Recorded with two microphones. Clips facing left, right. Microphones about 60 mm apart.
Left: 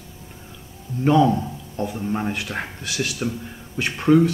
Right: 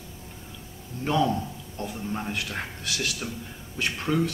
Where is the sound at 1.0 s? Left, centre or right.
Centre.